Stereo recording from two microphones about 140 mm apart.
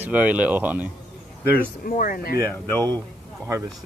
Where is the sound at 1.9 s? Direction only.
90° left.